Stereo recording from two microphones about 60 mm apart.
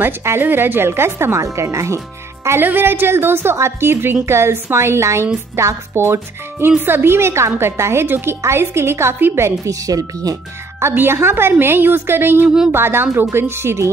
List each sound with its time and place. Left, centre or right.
0.0 s a woman's voice: right
2.6 s a woman's voice: right
6.8 s a woman's voice: right
9.7 s speech: right
10.8 s a woman's voice: right